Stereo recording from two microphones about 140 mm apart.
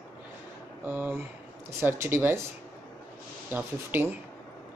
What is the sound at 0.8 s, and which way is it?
Speech, 15° right (ahead or behind).